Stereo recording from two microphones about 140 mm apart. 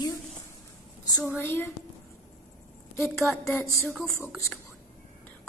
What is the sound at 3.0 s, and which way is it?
Speech, centre (ahead or behind).